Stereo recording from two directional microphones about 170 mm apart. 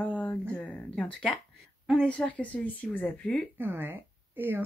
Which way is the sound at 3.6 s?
10° right (ahead or behind).